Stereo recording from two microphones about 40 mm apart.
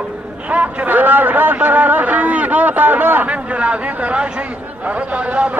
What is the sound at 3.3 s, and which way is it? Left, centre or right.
A man's voice, right.